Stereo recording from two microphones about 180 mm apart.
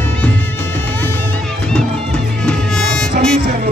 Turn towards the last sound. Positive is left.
turn(degrees=5)  # may be behind; listen again after turning